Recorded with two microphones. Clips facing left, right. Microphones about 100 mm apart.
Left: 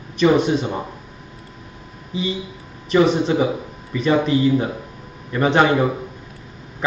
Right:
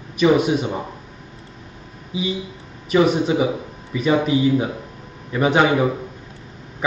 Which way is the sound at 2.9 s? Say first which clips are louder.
Left 1 dB; 5° right (ahead or behind).